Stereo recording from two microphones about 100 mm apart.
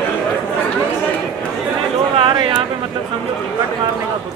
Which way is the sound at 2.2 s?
55° right (ahead or behind).